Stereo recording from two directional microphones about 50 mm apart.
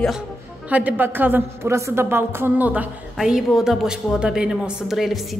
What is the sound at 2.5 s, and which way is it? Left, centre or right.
Speech, right.